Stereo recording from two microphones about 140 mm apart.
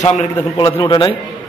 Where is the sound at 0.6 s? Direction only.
30° left (ahead or behind).